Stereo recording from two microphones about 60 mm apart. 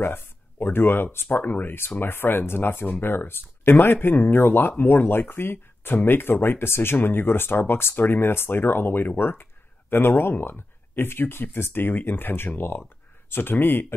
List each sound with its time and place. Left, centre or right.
0.0 s speech: left